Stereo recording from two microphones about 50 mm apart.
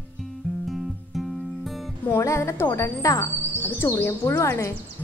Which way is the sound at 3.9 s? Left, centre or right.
Left.